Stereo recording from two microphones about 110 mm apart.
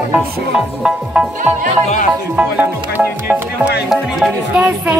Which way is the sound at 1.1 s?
10° right (ahead or behind).